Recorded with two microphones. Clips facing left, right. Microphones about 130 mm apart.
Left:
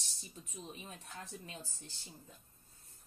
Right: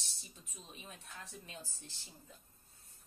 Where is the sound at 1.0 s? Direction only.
30° left (ahead or behind).